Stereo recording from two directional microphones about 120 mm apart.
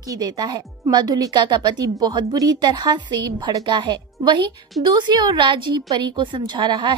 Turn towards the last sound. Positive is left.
turn(degrees=-40)  # may be behind; listen again after turning